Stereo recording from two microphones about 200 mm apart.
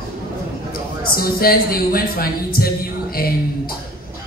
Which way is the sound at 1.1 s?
50° left (ahead or behind).